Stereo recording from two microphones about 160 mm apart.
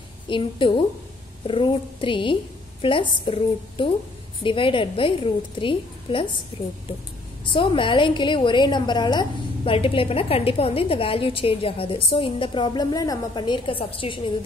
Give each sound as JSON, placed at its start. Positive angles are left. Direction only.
{"t": 0.3, "sound": "a woman's voice", "side_deg": 30}
{"t": 6.5, "sound": "a woman's voice", "side_deg": -20}
{"t": 7.4, "sound": "a woman's voice", "side_deg": 30}